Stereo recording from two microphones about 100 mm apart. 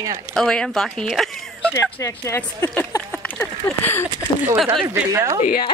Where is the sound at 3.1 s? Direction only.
10° left (ahead or behind).